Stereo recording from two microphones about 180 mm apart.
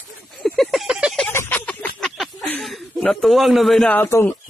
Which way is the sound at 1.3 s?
10° left (ahead or behind).